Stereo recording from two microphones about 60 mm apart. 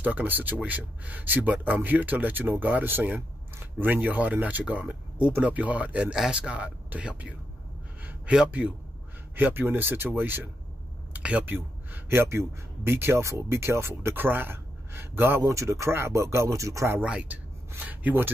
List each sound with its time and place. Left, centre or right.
0.0 s a man's voice: right
6.1 s a man's voice: centre
8.5 s a man's voice: right
9.3 s a man's voice: right
15.4 s speech: right
17.0 s speech: centre
17.3 s rub: right